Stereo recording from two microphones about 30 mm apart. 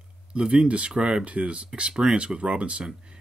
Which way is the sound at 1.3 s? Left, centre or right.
Right.